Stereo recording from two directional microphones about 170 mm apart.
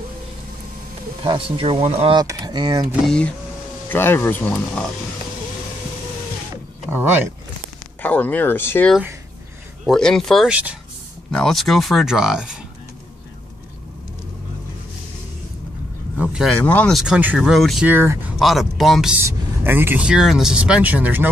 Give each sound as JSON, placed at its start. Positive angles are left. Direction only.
{"t": 1.2, "sound": "speech", "side_deg": -30}
{"t": 2.1, "sound": "speech", "side_deg": -25}
{"t": 3.1, "sound": "speech", "side_deg": 5}
{"t": 6.5, "sound": "a sound", "side_deg": -15}
{"t": 8.0, "sound": "speech", "side_deg": 10}
{"t": 16.2, "sound": "a sound", "side_deg": -5}
{"t": 16.5, "sound": "speech", "side_deg": 10}
{"t": 17.0, "sound": "speech", "side_deg": -5}
{"t": 17.8, "sound": "speech", "side_deg": -15}
{"t": 18.4, "sound": "speech", "side_deg": 0}
{"t": 19.2, "sound": "speech", "side_deg": -15}